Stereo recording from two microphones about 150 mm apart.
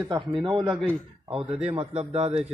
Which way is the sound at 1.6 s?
40° right (ahead or behind).